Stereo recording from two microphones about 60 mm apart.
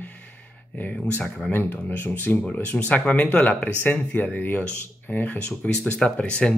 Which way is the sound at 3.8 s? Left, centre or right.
Left.